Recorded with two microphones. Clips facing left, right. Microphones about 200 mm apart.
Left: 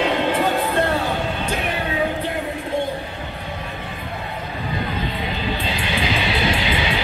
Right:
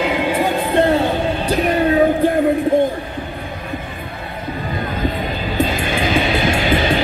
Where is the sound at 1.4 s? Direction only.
35° right (ahead or behind).